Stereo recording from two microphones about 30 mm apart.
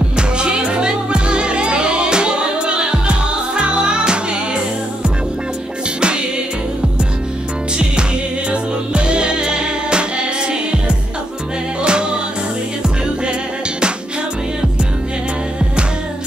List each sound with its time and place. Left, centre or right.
0.4 s music: right
8.5 s music: right
11.8 s music: right